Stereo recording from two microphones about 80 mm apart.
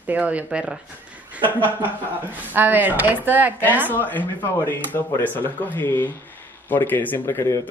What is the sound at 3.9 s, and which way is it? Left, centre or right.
Speech, left.